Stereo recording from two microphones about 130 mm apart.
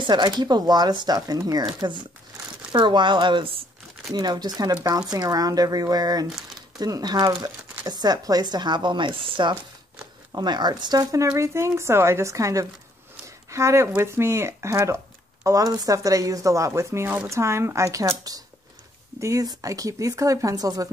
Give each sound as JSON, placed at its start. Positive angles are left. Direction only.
{"t": 0.0, "sound": "speech", "side_deg": -35}